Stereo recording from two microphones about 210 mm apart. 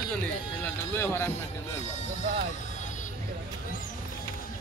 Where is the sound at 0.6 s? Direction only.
10° left (ahead or behind).